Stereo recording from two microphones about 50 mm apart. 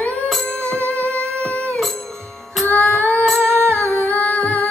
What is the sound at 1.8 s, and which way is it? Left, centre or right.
Music, centre.